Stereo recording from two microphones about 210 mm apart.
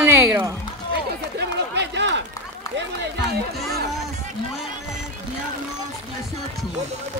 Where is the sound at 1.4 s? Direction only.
55° right (ahead or behind).